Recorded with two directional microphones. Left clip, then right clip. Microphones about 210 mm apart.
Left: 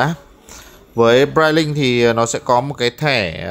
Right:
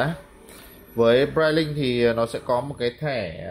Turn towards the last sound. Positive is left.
turn(degrees=35)  # may be behind; listen again after turning